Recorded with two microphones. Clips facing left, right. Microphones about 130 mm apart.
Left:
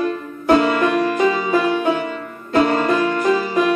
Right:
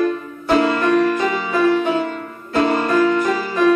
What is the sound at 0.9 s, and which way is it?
Music, 15° left (ahead or behind).